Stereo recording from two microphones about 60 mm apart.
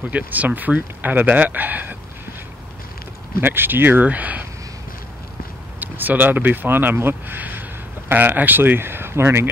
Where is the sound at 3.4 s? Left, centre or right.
Right.